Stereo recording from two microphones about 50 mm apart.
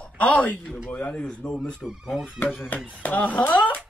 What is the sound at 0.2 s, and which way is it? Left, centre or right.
Speech, left.